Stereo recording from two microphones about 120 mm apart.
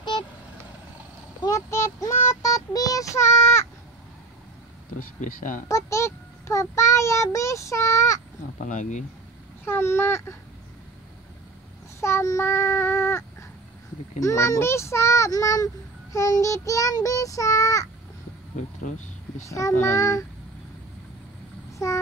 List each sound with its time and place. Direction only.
1.5 s child singing: 25° left (ahead or behind)
5.2 s speech: 90° left
5.7 s speech: 25° left (ahead or behind)
8.5 s speech: 90° left
9.7 s speech: 20° left (ahead or behind)
12.0 s child singing: 20° left (ahead or behind)
14.2 s speech: 25° left (ahead or behind)
18.8 s a sound: 90° left
19.4 s speech: 25° left (ahead or behind)